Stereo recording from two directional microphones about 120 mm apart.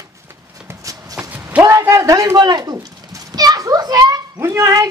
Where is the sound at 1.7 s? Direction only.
25° right (ahead or behind).